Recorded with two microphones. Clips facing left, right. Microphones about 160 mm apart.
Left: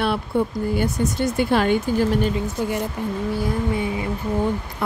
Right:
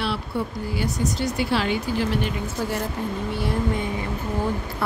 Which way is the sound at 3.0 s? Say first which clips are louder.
Left 2 dB; 15° left (ahead or behind).